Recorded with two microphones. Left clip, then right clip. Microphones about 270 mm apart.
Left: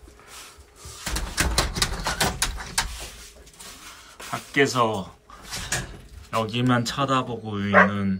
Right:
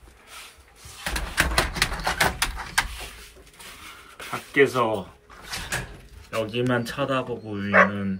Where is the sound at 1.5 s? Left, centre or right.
Right.